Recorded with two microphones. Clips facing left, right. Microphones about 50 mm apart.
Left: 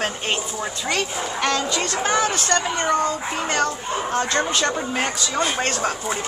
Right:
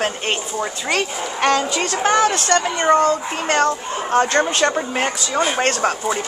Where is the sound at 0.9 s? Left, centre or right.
Right.